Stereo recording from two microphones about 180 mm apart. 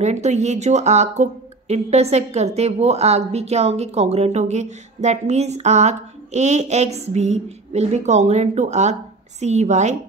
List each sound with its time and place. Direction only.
0.0 s speech: 40° right (ahead or behind)